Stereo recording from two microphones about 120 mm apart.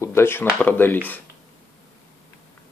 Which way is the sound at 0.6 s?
15° left (ahead or behind).